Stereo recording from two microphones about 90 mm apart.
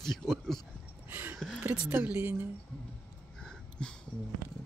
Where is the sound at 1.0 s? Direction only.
25° right (ahead or behind).